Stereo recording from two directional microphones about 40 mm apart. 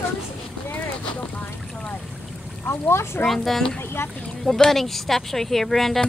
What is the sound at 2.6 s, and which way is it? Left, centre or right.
Speech, left.